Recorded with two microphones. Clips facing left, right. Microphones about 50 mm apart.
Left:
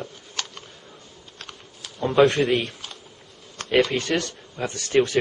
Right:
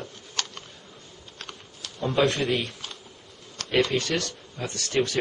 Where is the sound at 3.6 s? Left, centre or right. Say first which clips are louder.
Left 5 dB; left.